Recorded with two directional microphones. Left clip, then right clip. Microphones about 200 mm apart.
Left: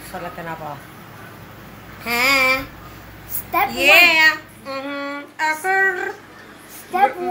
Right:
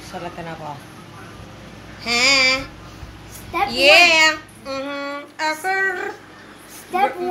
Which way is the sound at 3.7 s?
90° right.